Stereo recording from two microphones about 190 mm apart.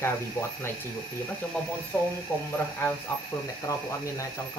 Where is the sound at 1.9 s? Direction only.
15° left (ahead or behind).